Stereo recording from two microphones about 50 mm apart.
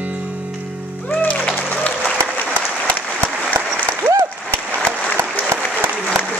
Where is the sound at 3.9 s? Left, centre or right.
Right.